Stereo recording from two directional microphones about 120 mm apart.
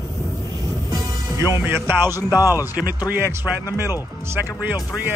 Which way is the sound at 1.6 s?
20° right (ahead or behind).